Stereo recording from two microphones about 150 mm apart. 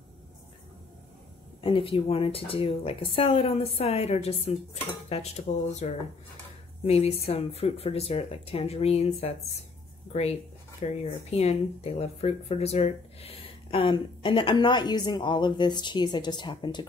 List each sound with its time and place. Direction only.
1.6 s speech: 35° left (ahead or behind)